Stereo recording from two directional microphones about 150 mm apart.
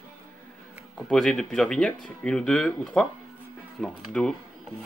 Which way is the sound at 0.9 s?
5° left (ahead or behind).